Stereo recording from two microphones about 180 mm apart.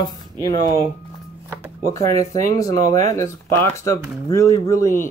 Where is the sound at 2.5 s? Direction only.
20° left (ahead or behind).